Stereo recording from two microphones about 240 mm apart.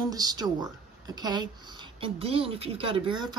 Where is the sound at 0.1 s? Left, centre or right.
Centre.